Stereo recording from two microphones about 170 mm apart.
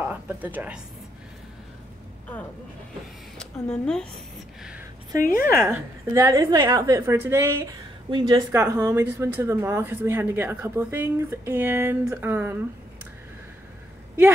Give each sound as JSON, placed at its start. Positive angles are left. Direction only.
{"t": 0.1, "sound": "speech", "side_deg": -10}
{"t": 3.3, "sound": "a woman's voice", "side_deg": 5}
{"t": 5.2, "sound": "a woman's voice", "side_deg": 55}
{"t": 5.5, "sound": "speech", "side_deg": -15}
{"t": 8.1, "sound": "a woman's voice", "side_deg": -25}